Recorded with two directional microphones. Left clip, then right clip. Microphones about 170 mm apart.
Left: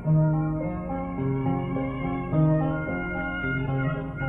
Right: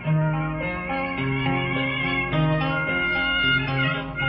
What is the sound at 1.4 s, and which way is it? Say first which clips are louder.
Music: right 5 dB; 30° left (ahead or behind).